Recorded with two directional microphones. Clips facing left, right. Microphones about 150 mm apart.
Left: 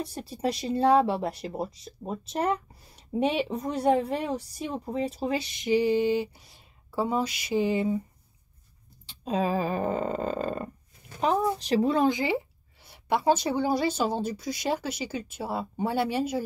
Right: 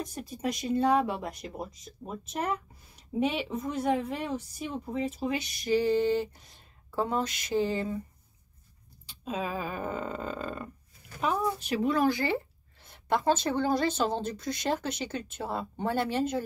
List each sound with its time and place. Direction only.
0.0 s speech: 35° left (ahead or behind)
5.7 s snoring: 15° left (ahead or behind)
9.2 s snoring: 35° left (ahead or behind); by 16.4 s 10° left (ahead or behind)